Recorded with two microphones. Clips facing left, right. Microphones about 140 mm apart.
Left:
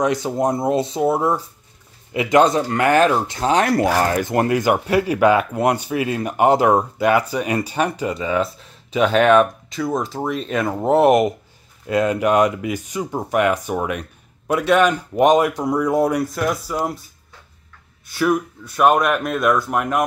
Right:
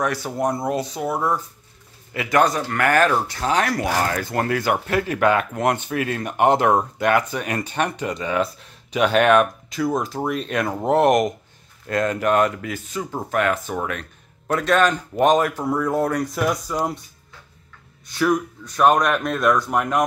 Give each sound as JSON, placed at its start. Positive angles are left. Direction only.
{"t": 0.0, "sound": "speech", "side_deg": 20}
{"t": 16.3, "sound": "speech", "side_deg": 0}
{"t": 18.0, "sound": "speech", "side_deg": 5}